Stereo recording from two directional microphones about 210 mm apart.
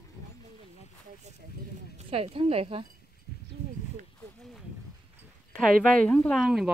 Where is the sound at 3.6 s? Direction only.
30° right (ahead or behind).